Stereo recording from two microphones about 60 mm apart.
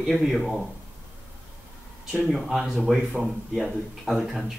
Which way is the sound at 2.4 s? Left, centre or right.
Centre.